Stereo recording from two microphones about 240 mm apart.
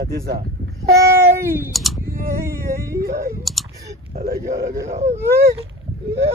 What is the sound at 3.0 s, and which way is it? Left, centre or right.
Speech, right.